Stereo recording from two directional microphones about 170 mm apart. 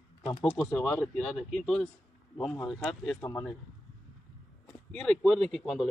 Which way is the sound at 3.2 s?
20° left (ahead or behind).